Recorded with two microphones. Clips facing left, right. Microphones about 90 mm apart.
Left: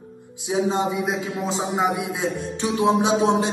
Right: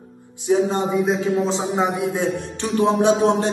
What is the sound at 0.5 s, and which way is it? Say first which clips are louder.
A man's voice: right 3 dB; 5° left (ahead or behind).